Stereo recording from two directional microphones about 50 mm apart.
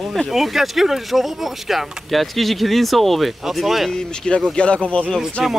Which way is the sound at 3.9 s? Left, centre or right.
Centre.